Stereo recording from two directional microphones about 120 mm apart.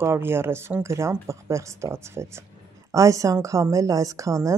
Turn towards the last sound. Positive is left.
turn(degrees=-25)  # may be behind; listen again after turning